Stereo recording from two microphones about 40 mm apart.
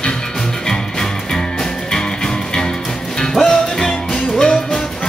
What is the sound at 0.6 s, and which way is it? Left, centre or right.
Music, centre.